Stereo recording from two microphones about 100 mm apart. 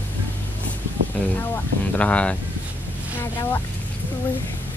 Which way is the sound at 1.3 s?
20° left (ahead or behind).